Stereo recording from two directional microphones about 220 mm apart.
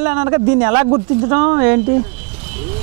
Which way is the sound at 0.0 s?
10° right (ahead or behind).